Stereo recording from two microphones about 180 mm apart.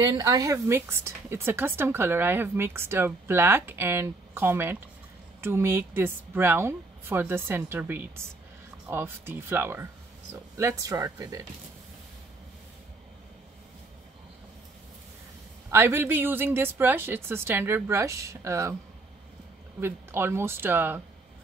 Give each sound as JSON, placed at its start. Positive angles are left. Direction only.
{"t": 0.1, "sound": "a woman's voice", "side_deg": -20}
{"t": 15.7, "sound": "a woman's voice", "side_deg": -15}
{"t": 19.8, "sound": "a woman's voice", "side_deg": -15}